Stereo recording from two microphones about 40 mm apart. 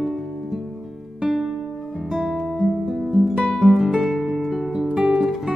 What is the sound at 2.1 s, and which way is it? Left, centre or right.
Music, centre.